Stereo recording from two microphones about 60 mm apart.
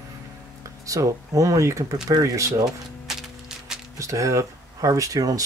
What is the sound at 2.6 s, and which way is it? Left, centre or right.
Music, centre.